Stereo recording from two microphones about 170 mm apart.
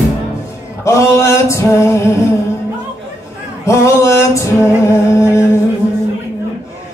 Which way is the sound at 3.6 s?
15° left (ahead or behind).